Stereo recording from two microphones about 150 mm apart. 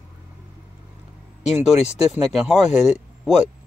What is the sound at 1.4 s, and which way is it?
Speech, 45° left (ahead or behind).